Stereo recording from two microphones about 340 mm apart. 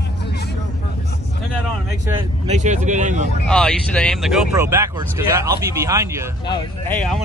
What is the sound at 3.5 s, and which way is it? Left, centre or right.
Speech, centre.